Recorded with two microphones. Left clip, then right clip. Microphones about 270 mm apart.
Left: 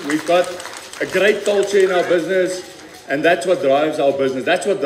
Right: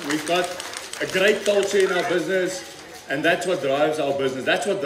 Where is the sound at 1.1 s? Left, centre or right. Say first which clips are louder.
Left 4 dB; left.